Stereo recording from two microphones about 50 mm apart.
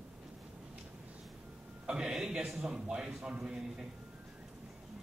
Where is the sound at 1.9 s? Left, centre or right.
Centre.